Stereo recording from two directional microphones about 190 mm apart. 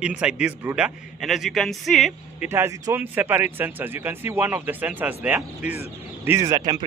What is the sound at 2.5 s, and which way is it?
Speech, 15° right (ahead or behind).